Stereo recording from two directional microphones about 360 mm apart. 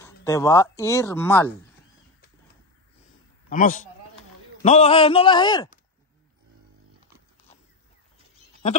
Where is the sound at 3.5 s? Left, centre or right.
Left.